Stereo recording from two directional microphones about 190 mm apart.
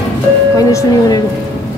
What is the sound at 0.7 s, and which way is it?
Speech, 15° left (ahead or behind).